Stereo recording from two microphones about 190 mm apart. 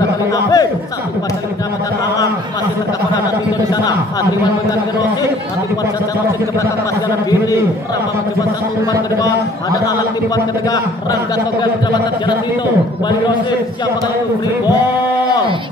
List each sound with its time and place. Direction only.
0.3 s speech: 20° left (ahead or behind)
9.8 s speech: 20° left (ahead or behind)